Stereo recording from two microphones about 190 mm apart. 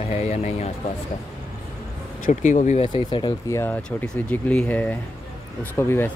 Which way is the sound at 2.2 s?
40° left (ahead or behind).